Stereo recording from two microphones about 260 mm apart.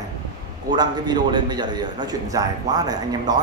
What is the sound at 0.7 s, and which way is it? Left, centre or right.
A man's voice, centre.